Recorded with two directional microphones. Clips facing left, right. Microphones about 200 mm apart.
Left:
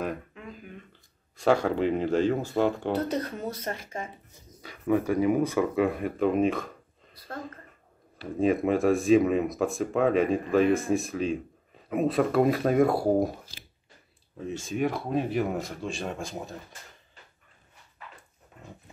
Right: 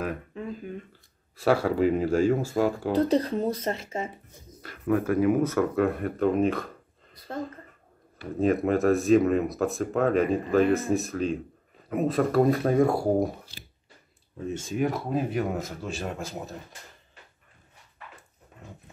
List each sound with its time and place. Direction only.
0.3 s a sound: 35° right (ahead or behind)
1.3 s speech: 5° right (ahead or behind)
3.1 s speech: 30° right (ahead or behind)
4.6 s speech: centre (ahead or behind)
5.6 s speech: 15° left (ahead or behind)
8.4 s speech: centre (ahead or behind)
14.6 s speech: centre (ahead or behind)